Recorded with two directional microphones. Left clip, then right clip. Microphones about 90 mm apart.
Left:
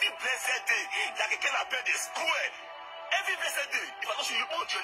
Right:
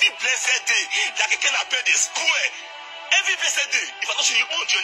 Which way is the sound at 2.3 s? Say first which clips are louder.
Right 8 dB; 35° right (ahead or behind).